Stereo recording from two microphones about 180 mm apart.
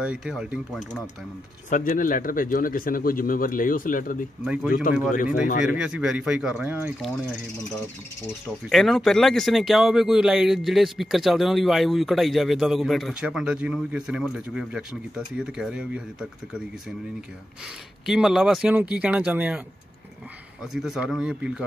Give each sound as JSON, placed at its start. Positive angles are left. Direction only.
{"t": 0.0, "sound": "speech", "side_deg": -5}
{"t": 1.7, "sound": "speech", "side_deg": 50}
{"t": 4.5, "sound": "speech", "side_deg": -5}
{"t": 8.6, "sound": "speech", "side_deg": 0}
{"t": 18.0, "sound": "speech", "side_deg": 0}
{"t": 20.7, "sound": "speech", "side_deg": -5}